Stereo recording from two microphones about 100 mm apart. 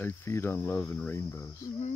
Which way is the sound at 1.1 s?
30° left (ahead or behind).